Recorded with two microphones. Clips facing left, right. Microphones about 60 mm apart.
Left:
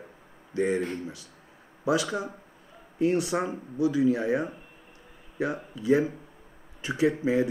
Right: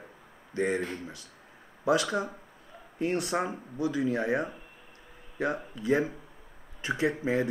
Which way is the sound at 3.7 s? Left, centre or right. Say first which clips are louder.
Left 5 dB; right.